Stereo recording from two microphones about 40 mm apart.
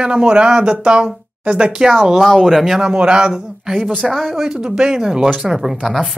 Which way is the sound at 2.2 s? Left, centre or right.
Centre.